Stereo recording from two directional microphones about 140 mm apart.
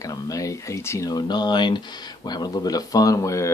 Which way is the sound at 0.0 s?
25° left (ahead or behind).